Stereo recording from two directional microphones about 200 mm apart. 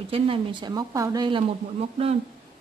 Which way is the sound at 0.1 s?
25° right (ahead or behind).